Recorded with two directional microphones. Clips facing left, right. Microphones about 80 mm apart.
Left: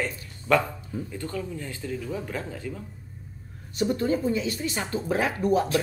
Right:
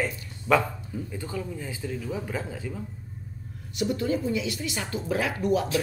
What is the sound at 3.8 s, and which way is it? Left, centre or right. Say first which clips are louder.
Speech: left 2 dB; left.